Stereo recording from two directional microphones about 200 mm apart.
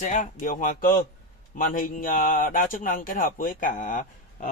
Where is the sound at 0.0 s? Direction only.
40° left (ahead or behind).